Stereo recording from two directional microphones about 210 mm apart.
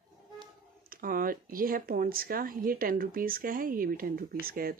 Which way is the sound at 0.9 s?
45° right (ahead or behind).